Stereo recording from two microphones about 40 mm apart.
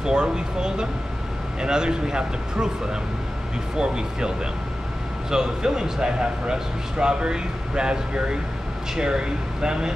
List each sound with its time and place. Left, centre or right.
0.0 s speech: right
5.3 s speech: centre